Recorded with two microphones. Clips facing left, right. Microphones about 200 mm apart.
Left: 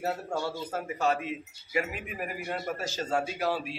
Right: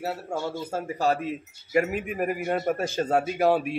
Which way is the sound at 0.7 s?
30° right (ahead or behind).